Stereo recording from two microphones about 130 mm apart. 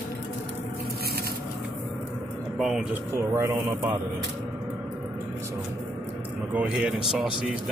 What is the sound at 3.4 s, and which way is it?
Speech, 25° right (ahead or behind).